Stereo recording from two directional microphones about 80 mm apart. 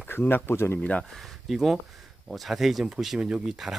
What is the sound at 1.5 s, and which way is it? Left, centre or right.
Speech, centre.